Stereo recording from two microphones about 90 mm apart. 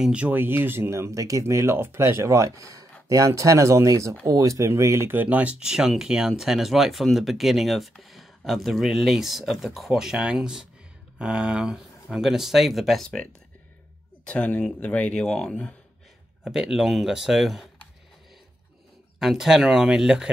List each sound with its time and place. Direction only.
0.0 s speech: 15° right (ahead or behind); by 15.7 s 10° left (ahead or behind)
16.4 s speech: 5° right (ahead or behind)
19.1 s speech: 5° right (ahead or behind)